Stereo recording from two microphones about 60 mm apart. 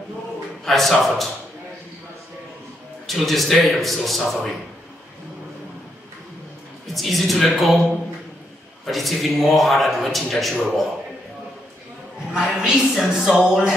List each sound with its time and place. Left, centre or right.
0.7 s a man's voice: centre
3.1 s a man's voice: centre
6.9 s a man's voice: centre
12.3 s a sound: centre